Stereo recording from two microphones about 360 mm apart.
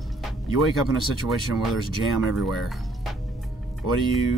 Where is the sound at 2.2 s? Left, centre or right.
Centre.